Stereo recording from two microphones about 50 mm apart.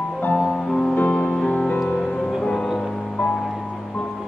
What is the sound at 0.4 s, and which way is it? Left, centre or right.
Music, centre.